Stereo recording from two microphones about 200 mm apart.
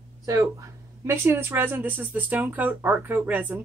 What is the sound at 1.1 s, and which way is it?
Speech, 10° right (ahead or behind).